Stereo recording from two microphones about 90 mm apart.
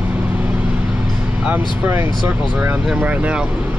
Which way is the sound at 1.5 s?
20° right (ahead or behind).